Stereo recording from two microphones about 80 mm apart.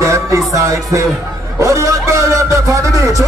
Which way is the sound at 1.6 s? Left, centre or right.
Right.